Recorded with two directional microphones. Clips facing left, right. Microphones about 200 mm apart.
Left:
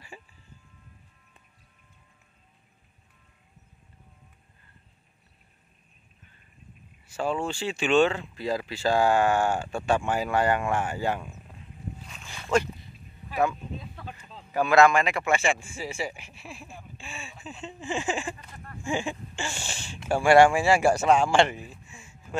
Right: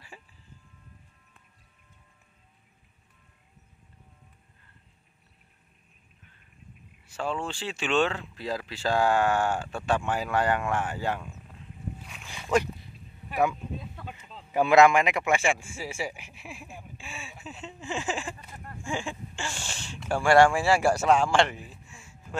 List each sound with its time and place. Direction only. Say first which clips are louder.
7.2 s speech: left 3 dB; 10° left (ahead or behind)
12.1 s boat: even; 10° right (ahead or behind)
13.3 s speech: even; 10° right (ahead or behind)
14.5 s speech: right 1 dB; 20° right (ahead or behind); by 20.1 s 10° left (ahead or behind)
20.1 s speech: left 2 dB; 20° left (ahead or behind)
21.0 s speech: left 1 dB; 5° left (ahead or behind)